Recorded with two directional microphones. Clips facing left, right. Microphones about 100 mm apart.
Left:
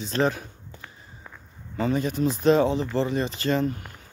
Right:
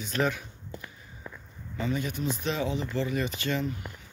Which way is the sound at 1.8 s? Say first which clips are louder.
Left 7 dB; 40° left (ahead or behind).